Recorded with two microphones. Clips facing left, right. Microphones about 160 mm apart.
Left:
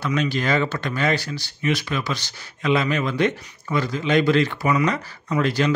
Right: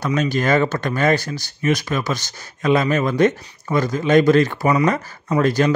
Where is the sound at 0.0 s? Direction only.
45° right (ahead or behind).